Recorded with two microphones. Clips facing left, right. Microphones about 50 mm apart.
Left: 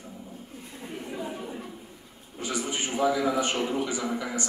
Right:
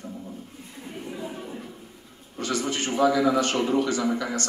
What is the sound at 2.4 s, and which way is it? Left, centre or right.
A man's voice, centre.